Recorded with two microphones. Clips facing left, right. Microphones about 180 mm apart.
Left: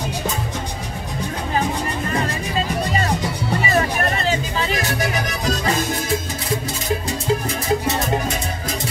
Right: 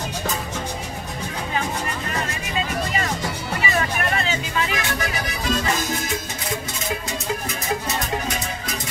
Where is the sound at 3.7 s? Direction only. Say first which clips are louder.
Left 3 dB; 35° left (ahead or behind).